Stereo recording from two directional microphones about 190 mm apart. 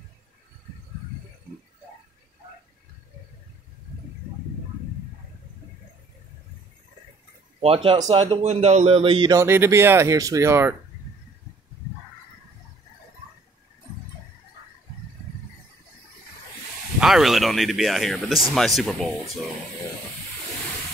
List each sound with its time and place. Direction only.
7.6 s a man's voice: 30° right (ahead or behind)
9.3 s speech: 15° right (ahead or behind)
17.0 s speech: centre (ahead or behind)